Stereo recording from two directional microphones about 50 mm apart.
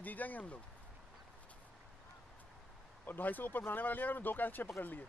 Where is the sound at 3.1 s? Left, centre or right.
Left.